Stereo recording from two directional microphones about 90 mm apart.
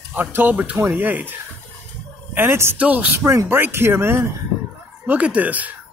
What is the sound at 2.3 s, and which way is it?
Speech, 25° right (ahead or behind).